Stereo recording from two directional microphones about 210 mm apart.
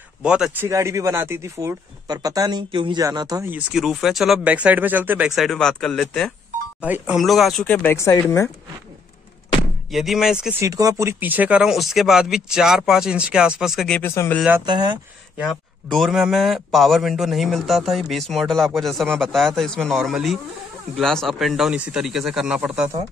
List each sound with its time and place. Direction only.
0.2 s speech: 5° right (ahead or behind); by 8.5 s 15° left (ahead or behind)
9.8 s a man's voice: centre (ahead or behind)
10.6 s a man's voice: 15° right (ahead or behind); by 14.4 s 10° left (ahead or behind)
14.7 s speech: 20° right (ahead or behind)
15.3 s a man's voice: centre (ahead or behind)